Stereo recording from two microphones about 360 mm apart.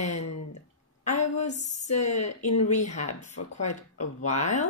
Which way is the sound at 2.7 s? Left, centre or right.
Centre.